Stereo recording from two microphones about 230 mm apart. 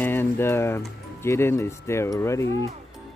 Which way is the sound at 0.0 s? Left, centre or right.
Centre.